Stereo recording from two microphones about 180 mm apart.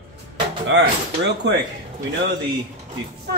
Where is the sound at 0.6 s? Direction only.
85° right.